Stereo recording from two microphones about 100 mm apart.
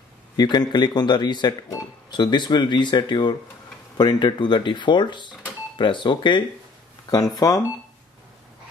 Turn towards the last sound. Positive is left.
turn(degrees=40)  # may be behind; listen again after turning